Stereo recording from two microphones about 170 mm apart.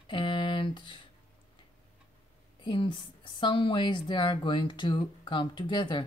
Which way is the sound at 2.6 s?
30° left (ahead or behind).